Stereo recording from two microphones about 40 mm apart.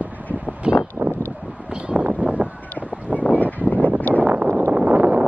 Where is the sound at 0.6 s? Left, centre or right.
Right.